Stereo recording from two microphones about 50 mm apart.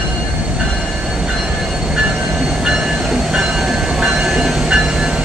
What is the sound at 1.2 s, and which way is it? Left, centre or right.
Train, centre.